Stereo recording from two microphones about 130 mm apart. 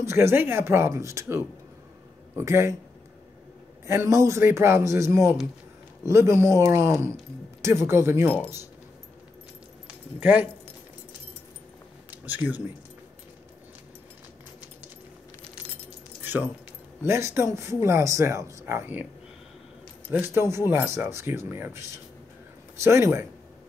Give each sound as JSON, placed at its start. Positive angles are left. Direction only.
{"t": 0.0, "sound": "speech", "side_deg": -20}
{"t": 3.8, "sound": "speech", "side_deg": -20}
{"t": 10.2, "sound": "speech", "side_deg": -15}
{"t": 12.1, "sound": "speech", "side_deg": -15}
{"t": 17.0, "sound": "speech", "side_deg": -20}
{"t": 20.1, "sound": "speech", "side_deg": -20}